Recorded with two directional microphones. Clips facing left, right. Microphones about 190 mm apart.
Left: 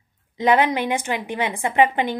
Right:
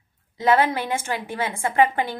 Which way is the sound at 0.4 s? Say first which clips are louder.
Left 1 dB; 20° left (ahead or behind).